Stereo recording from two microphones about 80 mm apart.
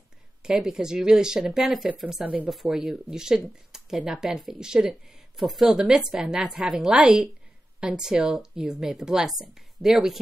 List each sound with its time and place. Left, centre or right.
0.4 s speech: centre
2.2 s speech: centre
2.5 s speech: centre